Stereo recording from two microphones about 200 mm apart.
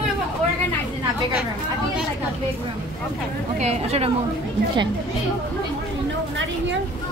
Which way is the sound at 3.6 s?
35° right (ahead or behind).